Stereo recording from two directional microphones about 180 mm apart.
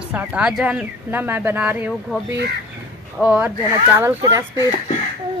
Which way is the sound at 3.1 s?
10° right (ahead or behind).